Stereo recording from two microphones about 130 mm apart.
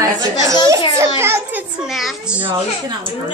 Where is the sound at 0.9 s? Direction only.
20° right (ahead or behind).